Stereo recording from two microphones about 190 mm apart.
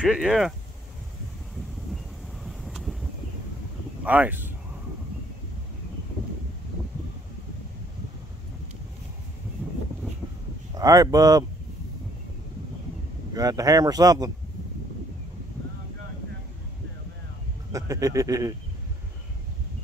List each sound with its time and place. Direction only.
0.0 s speech: centre (ahead or behind)
2.4 s vehicle: centre (ahead or behind)
4.0 s speech: 5° right (ahead or behind)
10.8 s speech: 20° right (ahead or behind)
13.3 s speech: 20° right (ahead or behind)
17.7 s speech: 15° right (ahead or behind)